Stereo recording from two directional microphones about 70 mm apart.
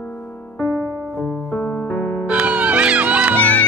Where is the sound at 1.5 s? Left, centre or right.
Left.